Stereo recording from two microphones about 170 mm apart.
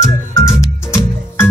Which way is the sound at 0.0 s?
15° left (ahead or behind).